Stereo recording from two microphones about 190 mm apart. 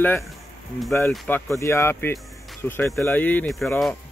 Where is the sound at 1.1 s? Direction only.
10° left (ahead or behind).